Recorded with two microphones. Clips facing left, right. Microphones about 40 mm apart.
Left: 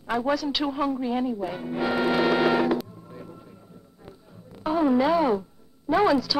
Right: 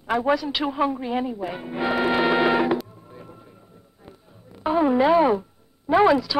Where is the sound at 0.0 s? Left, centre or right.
Centre.